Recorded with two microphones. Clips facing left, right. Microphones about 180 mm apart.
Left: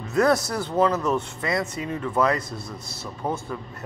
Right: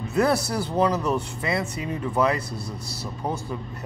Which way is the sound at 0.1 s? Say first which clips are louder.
Left 2 dB; 30° right (ahead or behind).